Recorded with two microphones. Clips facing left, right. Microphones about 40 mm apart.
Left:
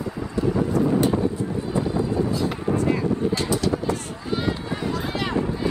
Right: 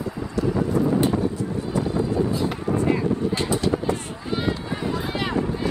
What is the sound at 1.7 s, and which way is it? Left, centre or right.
Vehicle, left.